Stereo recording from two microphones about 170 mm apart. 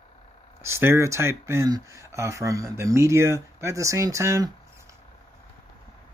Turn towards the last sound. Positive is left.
turn(degrees=-15)  # may be behind; listen again after turning